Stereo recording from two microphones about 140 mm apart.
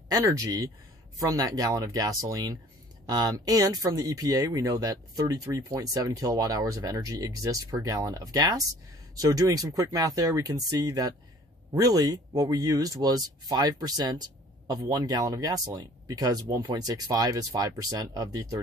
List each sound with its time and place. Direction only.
0.1 s speech: 25° right (ahead or behind)